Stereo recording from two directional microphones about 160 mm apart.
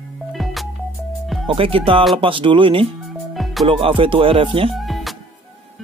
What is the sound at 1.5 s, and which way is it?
Speech, 35° right (ahead or behind).